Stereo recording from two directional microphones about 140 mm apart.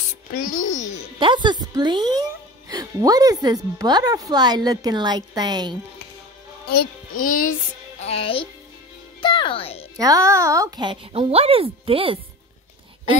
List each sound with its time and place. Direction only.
0.4 s a child's voice: 70° left (ahead or behind)
1.2 s a woman's voice: 35° right (ahead or behind)
6.7 s a child's voice: 80° left
8.0 s speech: 45° left (ahead or behind)
9.2 s music: 35° left (ahead or behind)
9.9 s speech: 25° right (ahead or behind); by 12.2 s 40° right (ahead or behind)